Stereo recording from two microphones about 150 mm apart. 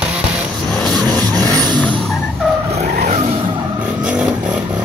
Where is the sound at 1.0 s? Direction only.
25° right (ahead or behind).